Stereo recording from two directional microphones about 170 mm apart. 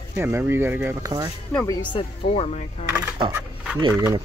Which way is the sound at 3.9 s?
20° right (ahead or behind).